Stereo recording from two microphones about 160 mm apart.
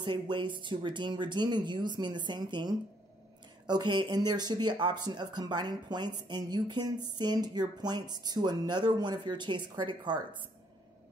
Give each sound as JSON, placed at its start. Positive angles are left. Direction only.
{"t": 0.0, "sound": "speech", "side_deg": -30}